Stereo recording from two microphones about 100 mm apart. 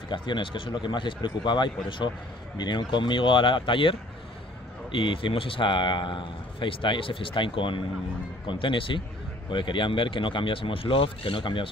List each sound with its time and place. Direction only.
0.1 s a man's voice: 55° left (ahead or behind)
4.9 s a man's voice: 60° left (ahead or behind)